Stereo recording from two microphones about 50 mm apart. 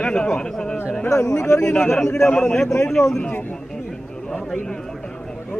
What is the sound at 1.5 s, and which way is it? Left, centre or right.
Speech, left.